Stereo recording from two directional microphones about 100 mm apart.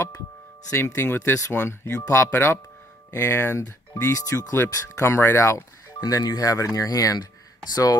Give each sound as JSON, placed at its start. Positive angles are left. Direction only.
{"t": 0.7, "sound": "speech", "side_deg": 30}
{"t": 2.0, "sound": "speech", "side_deg": 35}